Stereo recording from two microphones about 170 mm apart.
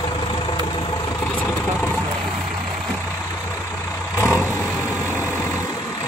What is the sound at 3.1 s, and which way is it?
Vehicle, 15° left (ahead or behind).